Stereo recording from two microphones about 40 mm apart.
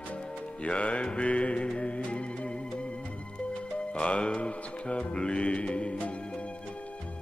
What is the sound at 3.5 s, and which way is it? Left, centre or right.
Speech, left.